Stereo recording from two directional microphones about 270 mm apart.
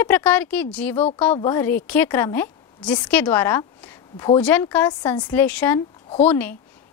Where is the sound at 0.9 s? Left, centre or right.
Left.